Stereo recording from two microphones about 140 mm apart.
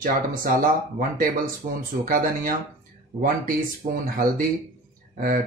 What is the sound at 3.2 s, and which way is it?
Speech, 85° right.